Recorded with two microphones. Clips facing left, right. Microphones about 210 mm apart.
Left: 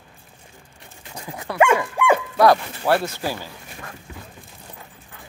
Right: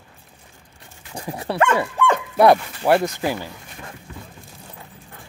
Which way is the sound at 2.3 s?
20° right (ahead or behind).